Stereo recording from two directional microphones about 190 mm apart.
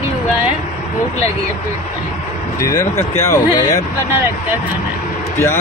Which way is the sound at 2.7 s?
15° left (ahead or behind).